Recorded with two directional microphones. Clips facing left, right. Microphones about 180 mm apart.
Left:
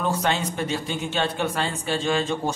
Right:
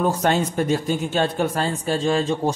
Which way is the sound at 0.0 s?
45° right (ahead or behind).